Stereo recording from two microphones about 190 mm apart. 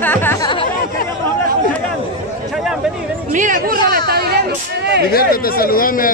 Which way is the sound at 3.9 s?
55° right (ahead or behind).